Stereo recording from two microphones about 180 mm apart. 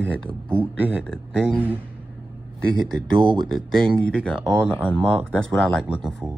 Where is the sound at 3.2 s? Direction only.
25° right (ahead or behind).